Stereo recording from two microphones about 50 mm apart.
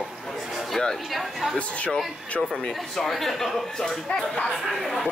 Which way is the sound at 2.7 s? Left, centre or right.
Centre.